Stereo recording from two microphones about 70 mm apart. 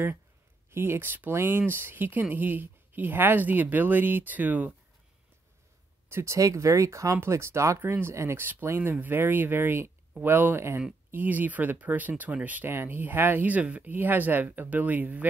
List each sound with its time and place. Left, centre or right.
0.7 s speech: right
6.0 s speech: right